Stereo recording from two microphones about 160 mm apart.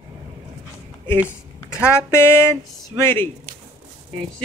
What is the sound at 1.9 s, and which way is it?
Speech, 15° left (ahead or behind).